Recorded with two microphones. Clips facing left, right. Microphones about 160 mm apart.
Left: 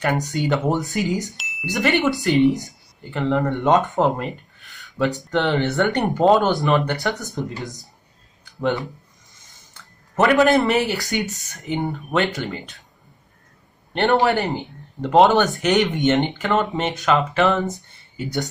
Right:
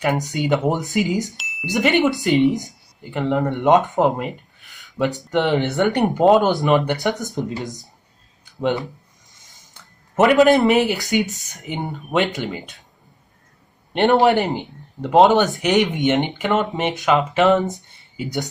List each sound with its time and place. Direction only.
0.3 s speech: 20° right (ahead or behind)
1.3 s wind chime: centre (ahead or behind)
1.7 s speech: 20° right (ahead or behind)
10.1 s speech: 15° right (ahead or behind)
13.9 s speech: 15° right (ahead or behind)